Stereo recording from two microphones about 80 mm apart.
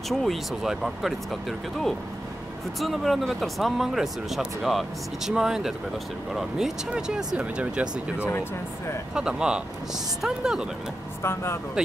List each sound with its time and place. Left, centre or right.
0.1 s speech: centre
11.2 s speech: left